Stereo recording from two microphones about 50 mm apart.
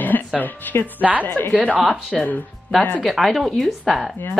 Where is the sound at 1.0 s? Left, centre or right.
Right.